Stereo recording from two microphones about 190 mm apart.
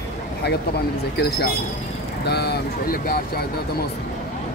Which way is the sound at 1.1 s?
55° left (ahead or behind).